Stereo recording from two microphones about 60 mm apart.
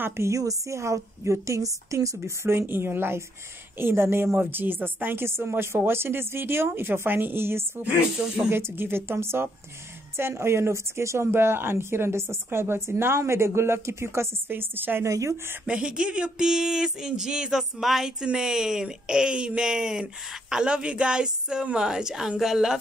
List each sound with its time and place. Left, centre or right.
0.2 s a woman's voice: right
2.4 s a woman's voice: right
15.0 s a woman's voice: right
15.6 s speech: centre
16.4 s a sound: centre